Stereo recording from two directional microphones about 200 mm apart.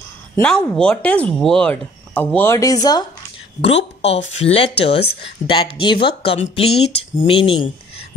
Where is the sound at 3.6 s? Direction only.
30° left (ahead or behind).